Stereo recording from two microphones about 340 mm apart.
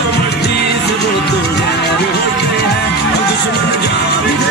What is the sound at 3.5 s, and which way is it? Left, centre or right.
Music, left.